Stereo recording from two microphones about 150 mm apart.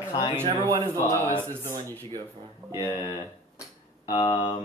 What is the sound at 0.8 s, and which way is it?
Speech, 15° left (ahead or behind).